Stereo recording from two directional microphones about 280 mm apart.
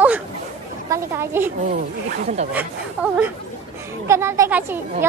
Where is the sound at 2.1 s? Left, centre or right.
Right.